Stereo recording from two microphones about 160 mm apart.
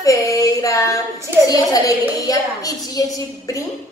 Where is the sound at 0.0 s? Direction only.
20° left (ahead or behind).